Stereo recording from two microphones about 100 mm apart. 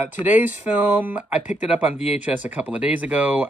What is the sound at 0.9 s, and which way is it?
Speech, 15° right (ahead or behind).